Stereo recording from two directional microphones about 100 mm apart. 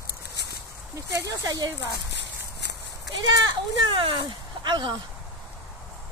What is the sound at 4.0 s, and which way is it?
Speech, 60° right (ahead or behind).